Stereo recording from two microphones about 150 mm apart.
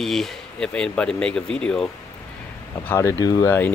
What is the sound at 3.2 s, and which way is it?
Speech, 25° left (ahead or behind).